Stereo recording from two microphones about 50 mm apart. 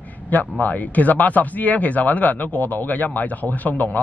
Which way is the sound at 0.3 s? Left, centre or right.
Left.